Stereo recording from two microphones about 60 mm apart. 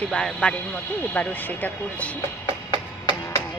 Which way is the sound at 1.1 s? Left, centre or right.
Left.